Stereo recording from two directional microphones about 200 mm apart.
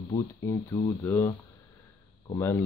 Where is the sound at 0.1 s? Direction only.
20° left (ahead or behind).